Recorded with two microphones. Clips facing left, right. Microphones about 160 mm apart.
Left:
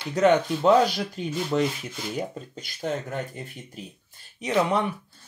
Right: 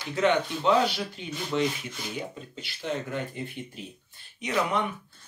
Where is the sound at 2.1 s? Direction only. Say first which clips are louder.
Left 7 dB; 45° left (ahead or behind).